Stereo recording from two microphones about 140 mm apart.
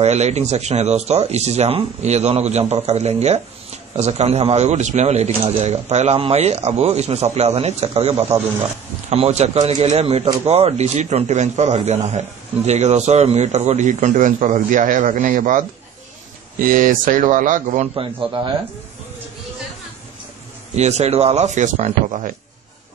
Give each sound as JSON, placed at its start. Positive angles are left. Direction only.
{"t": 0.0, "sound": "a man's voice", "side_deg": -50}
{"t": 16.6, "sound": "speech", "side_deg": -75}
{"t": 17.9, "sound": "a man's voice", "side_deg": -40}
{"t": 20.7, "sound": "speech", "side_deg": -50}